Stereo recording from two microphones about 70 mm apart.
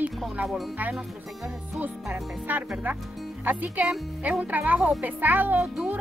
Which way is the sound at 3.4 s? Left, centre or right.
Right.